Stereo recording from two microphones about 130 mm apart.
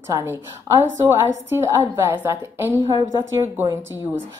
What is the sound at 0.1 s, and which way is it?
A woman's voice, 20° right (ahead or behind).